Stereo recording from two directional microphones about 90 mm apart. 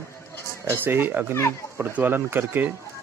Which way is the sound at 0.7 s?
25° right (ahead or behind).